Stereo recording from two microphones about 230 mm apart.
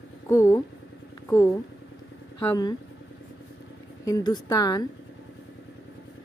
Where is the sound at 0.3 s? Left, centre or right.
Centre.